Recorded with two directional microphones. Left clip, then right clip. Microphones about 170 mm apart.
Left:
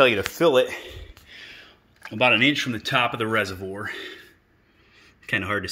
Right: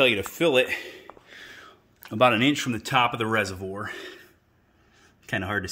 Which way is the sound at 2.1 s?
30° right (ahead or behind).